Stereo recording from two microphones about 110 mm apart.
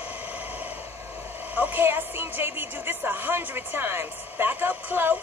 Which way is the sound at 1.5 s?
15° right (ahead or behind).